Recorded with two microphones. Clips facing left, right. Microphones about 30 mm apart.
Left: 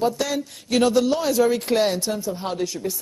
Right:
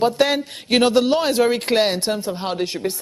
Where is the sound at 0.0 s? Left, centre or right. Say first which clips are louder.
Right 5 dB; right.